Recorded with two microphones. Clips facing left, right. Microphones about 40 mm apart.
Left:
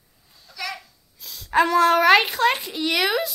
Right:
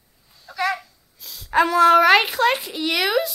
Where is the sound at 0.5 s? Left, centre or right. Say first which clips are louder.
Right 9 dB; right.